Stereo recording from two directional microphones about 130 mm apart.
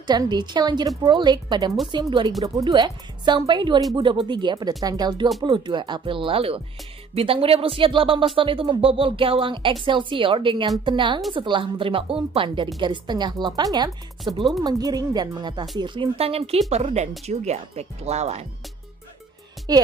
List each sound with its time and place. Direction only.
0.0 s a woman's voice: 35° right (ahead or behind)
14.2 s speech: centre (ahead or behind)
14.6 s a woman's voice: 30° right (ahead or behind); by 18.5 s 55° right (ahead or behind)
19.7 s a woman's voice: 30° right (ahead or behind)